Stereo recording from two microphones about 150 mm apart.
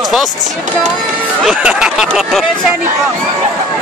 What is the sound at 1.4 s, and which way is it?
Speech, 5° right (ahead or behind).